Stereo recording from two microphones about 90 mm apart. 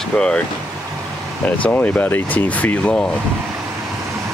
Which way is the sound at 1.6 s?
15° left (ahead or behind).